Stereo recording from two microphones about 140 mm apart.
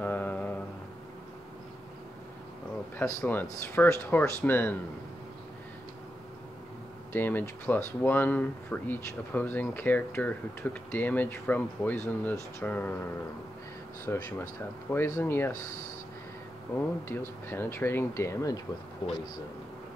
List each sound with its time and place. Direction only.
0.0 s mantra: 10° left (ahead or behind)
3.0 s speech: 15° left (ahead or behind)
7.1 s speech: 15° left (ahead or behind)
14.1 s speech: 15° left (ahead or behind)
17.1 s speech: 15° left (ahead or behind)